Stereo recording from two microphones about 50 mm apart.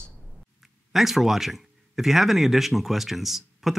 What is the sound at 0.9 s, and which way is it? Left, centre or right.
Speech, centre.